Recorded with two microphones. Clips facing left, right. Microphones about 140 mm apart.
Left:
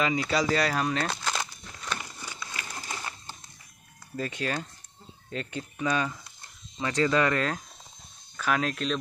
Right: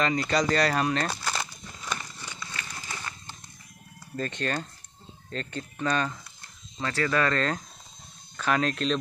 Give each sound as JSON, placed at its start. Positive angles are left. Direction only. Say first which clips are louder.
{"t": 0.0, "sound": "speech", "louder": "right 1 dB", "side_deg": 5}
{"t": 2.0, "sound": "a sound", "louder": "left 1 dB", "side_deg": 10}
{"t": 4.2, "sound": "speech", "louder": "right 1 dB", "side_deg": 5}
{"t": 6.8, "sound": "speech", "louder": "left 2 dB", "side_deg": 20}
{"t": 8.4, "sound": "speech", "louder": "right 2 dB", "side_deg": 5}